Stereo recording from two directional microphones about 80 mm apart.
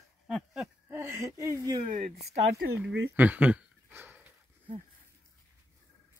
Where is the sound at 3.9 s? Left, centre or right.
Right.